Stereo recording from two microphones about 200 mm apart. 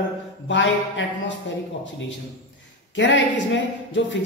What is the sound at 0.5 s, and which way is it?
Speech, 65° left (ahead or behind).